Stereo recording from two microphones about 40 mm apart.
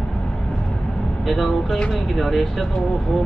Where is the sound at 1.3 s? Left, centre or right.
Centre.